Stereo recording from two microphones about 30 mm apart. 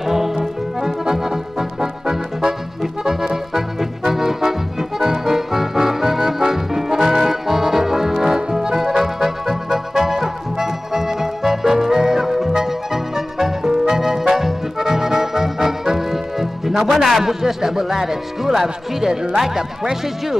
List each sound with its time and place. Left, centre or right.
0.0 s music: centre
0.7 s accordion: centre
8.5 s music: centre
16.9 s a man's voice: centre